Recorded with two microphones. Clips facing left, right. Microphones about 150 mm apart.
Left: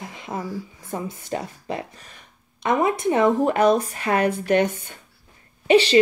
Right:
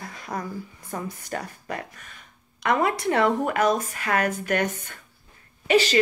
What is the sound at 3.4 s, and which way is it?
Speech, 30° left (ahead or behind).